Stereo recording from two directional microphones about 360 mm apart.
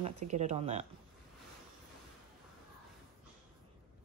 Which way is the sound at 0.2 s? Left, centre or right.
Centre.